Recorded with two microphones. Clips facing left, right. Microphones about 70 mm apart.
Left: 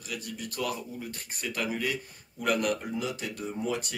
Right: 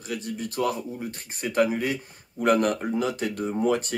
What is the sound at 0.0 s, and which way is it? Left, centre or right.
Speech, right.